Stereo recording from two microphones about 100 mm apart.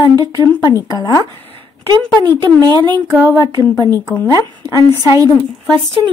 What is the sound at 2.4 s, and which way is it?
Speech, 40° right (ahead or behind).